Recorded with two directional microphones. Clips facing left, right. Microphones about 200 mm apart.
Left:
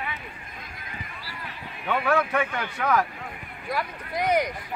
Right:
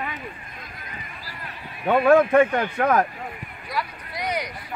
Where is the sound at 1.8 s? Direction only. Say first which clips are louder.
Right 8 dB; 45° right (ahead or behind).